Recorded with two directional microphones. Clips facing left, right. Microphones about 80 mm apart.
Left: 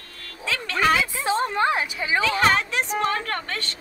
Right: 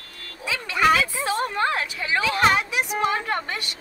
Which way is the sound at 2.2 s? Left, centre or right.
Centre.